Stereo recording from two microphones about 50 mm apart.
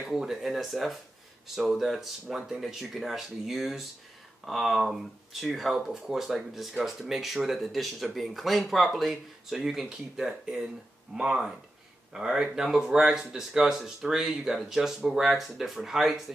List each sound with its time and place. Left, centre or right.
0.1 s speech: centre